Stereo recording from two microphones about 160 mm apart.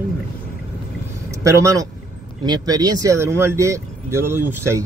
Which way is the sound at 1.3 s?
20° right (ahead or behind).